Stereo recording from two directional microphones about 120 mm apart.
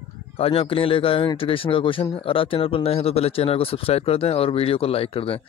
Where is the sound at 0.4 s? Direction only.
50° left (ahead or behind).